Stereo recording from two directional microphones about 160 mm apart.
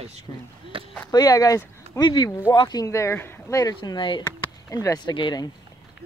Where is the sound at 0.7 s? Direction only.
35° right (ahead or behind).